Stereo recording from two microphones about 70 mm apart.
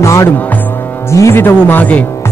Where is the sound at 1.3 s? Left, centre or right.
Left.